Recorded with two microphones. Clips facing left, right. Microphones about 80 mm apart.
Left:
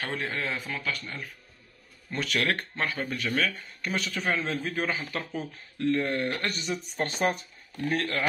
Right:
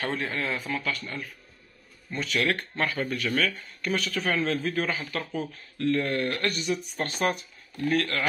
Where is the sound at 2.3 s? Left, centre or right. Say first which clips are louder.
Right 2 dB; left.